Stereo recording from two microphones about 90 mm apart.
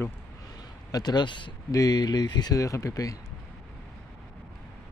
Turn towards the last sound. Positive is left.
turn(degrees=40)  # may be behind; listen again after turning